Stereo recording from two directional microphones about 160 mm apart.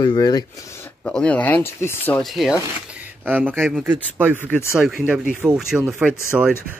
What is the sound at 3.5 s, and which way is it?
Speech, 5° left (ahead or behind).